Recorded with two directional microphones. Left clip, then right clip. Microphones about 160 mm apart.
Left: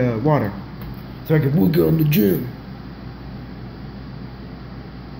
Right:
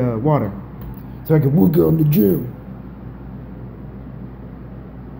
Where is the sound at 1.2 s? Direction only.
20° right (ahead or behind).